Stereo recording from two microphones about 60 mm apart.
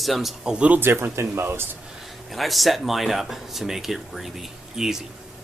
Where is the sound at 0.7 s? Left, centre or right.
Right.